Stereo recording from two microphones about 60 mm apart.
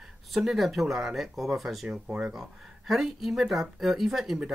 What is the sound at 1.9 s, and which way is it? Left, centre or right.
Speech, centre.